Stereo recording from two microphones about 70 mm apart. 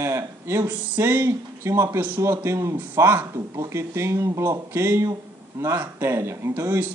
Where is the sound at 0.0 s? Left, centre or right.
Right.